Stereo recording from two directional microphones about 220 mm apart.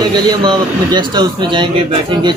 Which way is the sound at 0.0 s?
20° right (ahead or behind).